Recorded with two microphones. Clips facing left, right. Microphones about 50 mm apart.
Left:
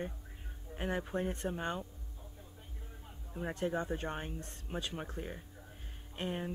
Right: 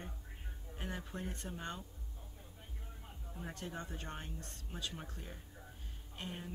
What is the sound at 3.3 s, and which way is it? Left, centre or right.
Speech, left.